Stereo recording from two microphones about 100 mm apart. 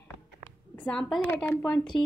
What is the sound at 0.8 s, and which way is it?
A woman's voice, 5° left (ahead or behind).